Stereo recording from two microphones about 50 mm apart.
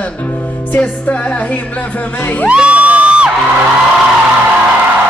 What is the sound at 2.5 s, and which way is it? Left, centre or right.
Music, right.